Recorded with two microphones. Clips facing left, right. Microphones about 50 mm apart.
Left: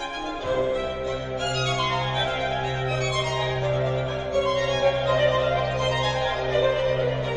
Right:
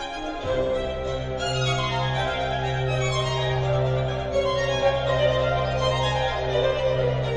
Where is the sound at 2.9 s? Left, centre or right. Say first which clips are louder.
Even; left.